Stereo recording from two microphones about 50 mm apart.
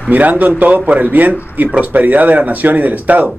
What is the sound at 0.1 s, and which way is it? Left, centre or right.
Speech, right.